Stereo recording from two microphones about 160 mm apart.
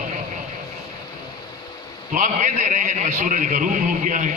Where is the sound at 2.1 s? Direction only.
50° right (ahead or behind).